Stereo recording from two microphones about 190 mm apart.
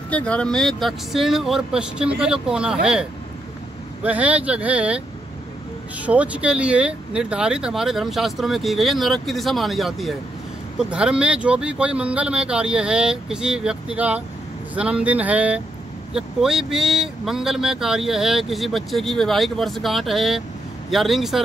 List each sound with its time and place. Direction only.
0.1 s speech: 5° left (ahead or behind)